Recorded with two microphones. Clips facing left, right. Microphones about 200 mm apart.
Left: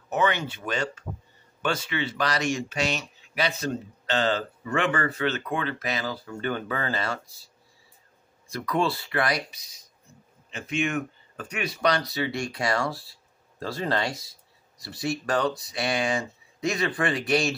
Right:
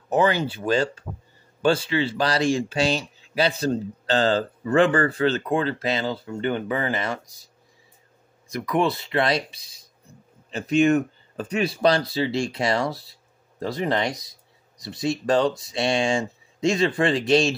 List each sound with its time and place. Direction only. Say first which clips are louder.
0.1 s speech: right 5 dB; 30° right (ahead or behind); by 7.4 s 15° right (ahead or behind)
8.5 s speech: right 3 dB; 15° right (ahead or behind)